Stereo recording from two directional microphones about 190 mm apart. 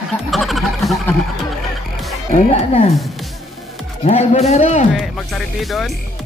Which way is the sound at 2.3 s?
35° left (ahead or behind).